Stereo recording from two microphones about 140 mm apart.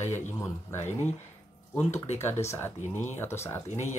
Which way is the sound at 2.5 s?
15° left (ahead or behind).